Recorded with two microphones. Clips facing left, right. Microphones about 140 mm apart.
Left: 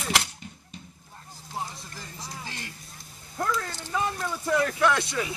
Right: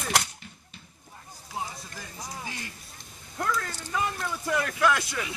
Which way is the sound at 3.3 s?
30° left (ahead or behind).